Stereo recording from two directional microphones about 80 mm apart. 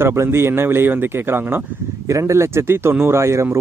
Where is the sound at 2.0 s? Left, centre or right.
Right.